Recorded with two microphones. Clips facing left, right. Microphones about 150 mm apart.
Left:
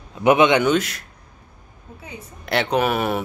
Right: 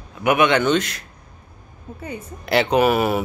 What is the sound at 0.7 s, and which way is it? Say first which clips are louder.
Speech: even; 5° left (ahead or behind).